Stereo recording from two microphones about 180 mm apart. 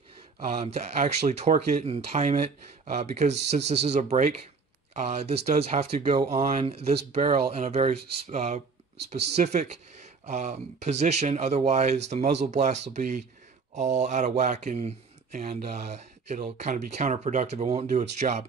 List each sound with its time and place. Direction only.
0.5 s speech: 35° right (ahead or behind)